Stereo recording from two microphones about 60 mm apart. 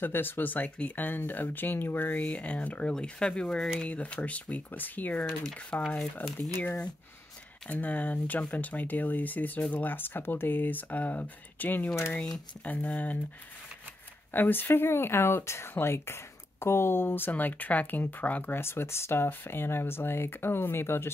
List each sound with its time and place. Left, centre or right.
0.0 s speech: left
2.9 s speech: centre; by 5.2 s left
5.4 s speech: centre
6.2 s speech: left
7.8 s speech: left
14.3 s speech: left
18.6 s speech: left